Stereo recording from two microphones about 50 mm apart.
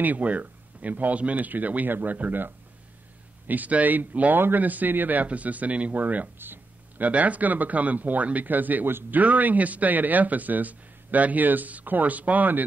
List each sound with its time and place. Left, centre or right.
0.0 s a man's voice: right
6.3 s a sound: right
7.1 s a man's voice: right